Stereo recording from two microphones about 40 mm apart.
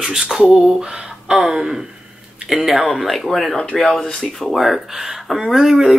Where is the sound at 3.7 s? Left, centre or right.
Centre.